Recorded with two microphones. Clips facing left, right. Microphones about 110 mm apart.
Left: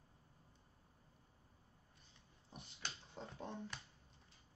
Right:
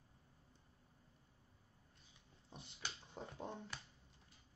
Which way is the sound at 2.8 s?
5° right (ahead or behind).